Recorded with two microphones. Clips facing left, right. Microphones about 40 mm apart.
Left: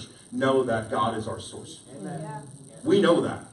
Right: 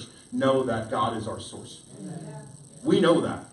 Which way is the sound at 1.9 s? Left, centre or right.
Left.